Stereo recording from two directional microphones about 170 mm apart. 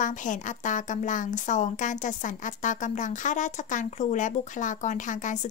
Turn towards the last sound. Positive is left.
turn(degrees=45)  # may be behind; listen again after turning